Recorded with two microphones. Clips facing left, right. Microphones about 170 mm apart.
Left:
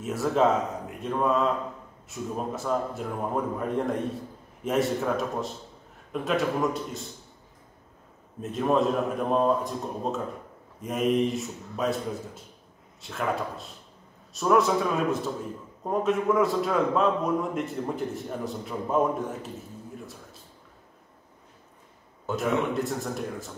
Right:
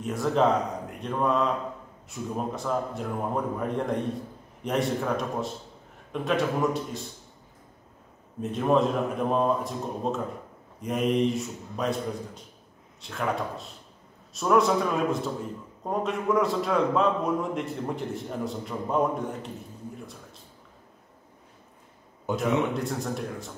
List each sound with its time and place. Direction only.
0.0 s a man's voice: 5° left (ahead or behind)
8.4 s a man's voice: centre (ahead or behind)
22.3 s a man's voice: centre (ahead or behind)